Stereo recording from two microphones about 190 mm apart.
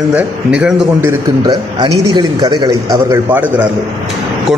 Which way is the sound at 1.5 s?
20° right (ahead or behind).